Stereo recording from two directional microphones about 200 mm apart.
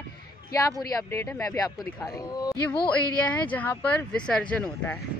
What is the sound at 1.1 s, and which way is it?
Speech, 10° left (ahead or behind).